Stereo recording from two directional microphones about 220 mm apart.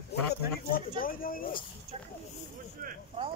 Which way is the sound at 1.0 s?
40° left (ahead or behind).